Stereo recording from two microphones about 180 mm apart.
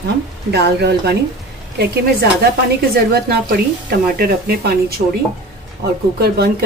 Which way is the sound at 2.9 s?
60° right (ahead or behind).